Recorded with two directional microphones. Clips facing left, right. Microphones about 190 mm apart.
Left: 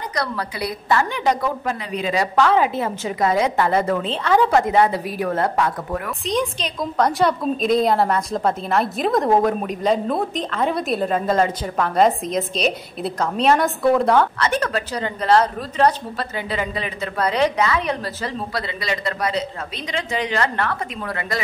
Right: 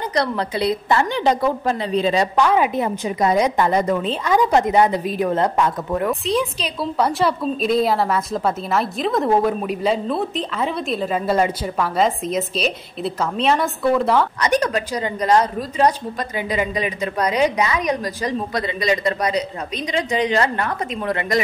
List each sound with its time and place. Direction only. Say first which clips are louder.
0.1 s a woman's voice: right 5 dB; 25° right (ahead or behind)
2.3 s a woman's voice: even; 15° right (ahead or behind)
6.2 s a woman's voice: right 1 dB; 5° right (ahead or behind)
14.4 s a woman's voice: right 3 dB; 15° right (ahead or behind)